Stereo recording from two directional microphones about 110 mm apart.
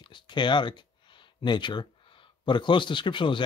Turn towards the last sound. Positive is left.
turn(degrees=50)  # may be behind; listen again after turning